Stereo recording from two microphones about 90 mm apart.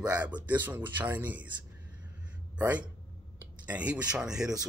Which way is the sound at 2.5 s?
15° right (ahead or behind).